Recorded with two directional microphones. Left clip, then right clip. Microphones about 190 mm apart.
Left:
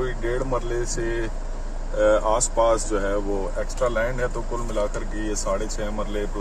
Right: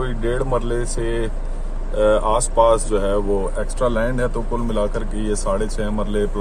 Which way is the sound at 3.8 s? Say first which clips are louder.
Right 3 dB; 25° right (ahead or behind).